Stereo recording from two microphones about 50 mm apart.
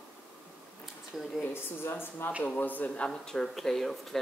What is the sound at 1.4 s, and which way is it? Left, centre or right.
Speech, left.